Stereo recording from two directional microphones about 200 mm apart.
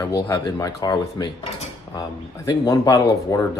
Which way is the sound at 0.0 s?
20° left (ahead or behind).